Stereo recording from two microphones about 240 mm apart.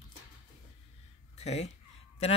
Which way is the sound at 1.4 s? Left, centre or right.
Left.